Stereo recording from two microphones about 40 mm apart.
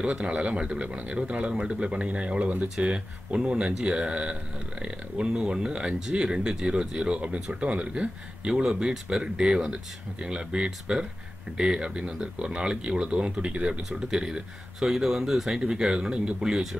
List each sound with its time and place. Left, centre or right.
0.0 s speech: right; by 15.6 s centre
15.6 s speech: centre